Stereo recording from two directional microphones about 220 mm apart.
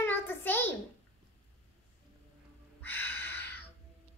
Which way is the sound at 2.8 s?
10° left (ahead or behind).